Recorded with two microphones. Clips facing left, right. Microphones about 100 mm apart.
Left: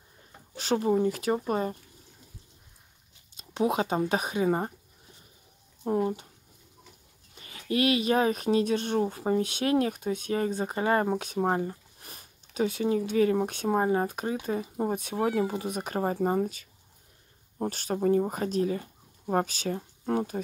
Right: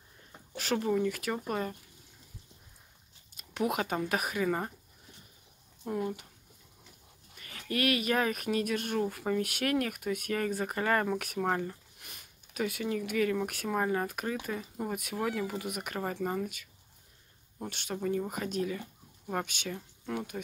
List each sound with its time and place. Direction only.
0.6 s speech: 30° left (ahead or behind)
3.3 s speech: 30° left (ahead or behind)
5.9 s speech: 35° left (ahead or behind)
7.3 s speech: 25° left (ahead or behind)